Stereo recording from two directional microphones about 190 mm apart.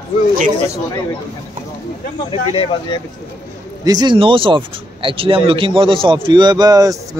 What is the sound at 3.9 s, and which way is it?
A man's voice, 25° right (ahead or behind).